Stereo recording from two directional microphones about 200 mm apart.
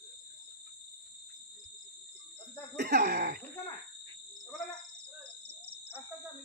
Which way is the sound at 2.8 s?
50° right (ahead or behind).